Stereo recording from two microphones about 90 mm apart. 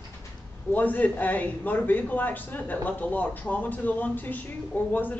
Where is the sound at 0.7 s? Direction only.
20° left (ahead or behind).